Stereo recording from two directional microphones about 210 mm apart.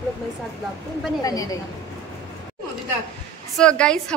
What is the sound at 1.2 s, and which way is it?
Speech, 15° left (ahead or behind).